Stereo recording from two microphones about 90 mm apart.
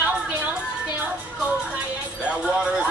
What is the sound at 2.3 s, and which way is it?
Music, 15° right (ahead or behind).